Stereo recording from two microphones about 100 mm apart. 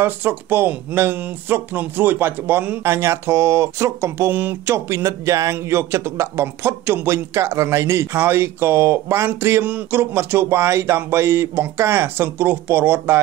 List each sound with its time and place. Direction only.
0.0 s speech: 20° right (ahead or behind)